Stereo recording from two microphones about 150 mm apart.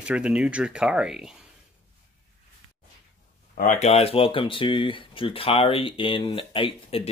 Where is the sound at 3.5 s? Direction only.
60° left (ahead or behind).